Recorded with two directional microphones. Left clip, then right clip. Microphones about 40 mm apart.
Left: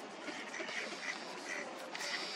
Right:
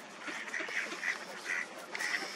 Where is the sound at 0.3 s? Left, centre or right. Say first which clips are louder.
Right 6 dB; centre.